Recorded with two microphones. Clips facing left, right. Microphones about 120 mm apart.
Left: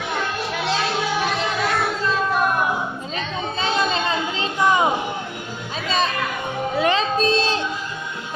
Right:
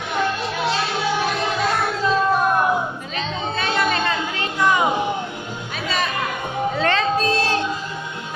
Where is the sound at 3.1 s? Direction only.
20° left (ahead or behind).